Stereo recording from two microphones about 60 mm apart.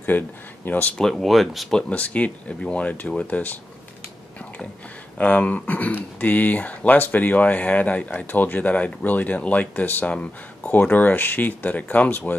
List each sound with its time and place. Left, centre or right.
0.1 s speech: left
0.9 s speech: centre
1.7 s speech: centre
5.1 s speech: left